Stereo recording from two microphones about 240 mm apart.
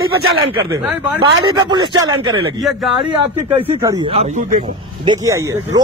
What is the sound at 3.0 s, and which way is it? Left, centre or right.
Speech, right.